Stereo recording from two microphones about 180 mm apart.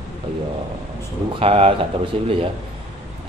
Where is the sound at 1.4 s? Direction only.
35° right (ahead or behind).